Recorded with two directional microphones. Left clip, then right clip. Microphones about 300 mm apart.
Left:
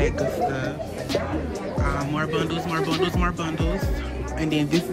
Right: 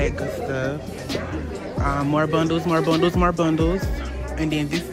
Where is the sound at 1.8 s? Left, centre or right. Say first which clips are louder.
Right 7 dB; centre.